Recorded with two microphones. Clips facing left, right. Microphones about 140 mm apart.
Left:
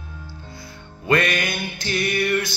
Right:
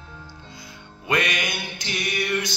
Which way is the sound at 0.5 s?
15° right (ahead or behind).